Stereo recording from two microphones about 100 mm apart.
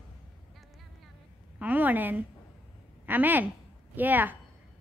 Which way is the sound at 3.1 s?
15° right (ahead or behind).